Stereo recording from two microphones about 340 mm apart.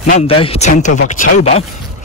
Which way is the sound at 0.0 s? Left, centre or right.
Centre.